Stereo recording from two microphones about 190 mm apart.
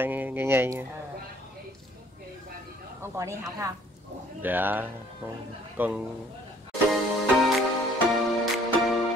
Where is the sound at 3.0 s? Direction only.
15° right (ahead or behind).